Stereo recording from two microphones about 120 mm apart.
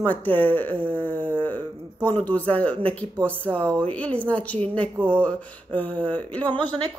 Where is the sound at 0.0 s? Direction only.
15° left (ahead or behind).